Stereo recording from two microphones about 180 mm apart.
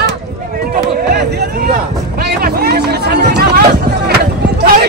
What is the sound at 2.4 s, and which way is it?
Hubbub, 60° right (ahead or behind).